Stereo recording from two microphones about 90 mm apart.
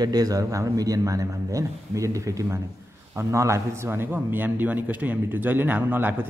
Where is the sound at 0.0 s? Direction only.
45° right (ahead or behind).